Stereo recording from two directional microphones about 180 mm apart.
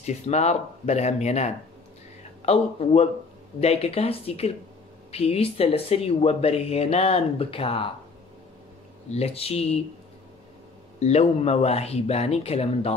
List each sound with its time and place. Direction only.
0.0 s speech: 40° left (ahead or behind)
9.1 s speech: 35° left (ahead or behind)
11.0 s speech: 35° left (ahead or behind)